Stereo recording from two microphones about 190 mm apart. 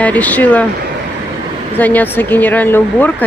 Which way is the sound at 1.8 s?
10° left (ahead or behind).